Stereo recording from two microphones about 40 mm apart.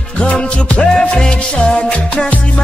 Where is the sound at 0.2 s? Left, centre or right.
Left.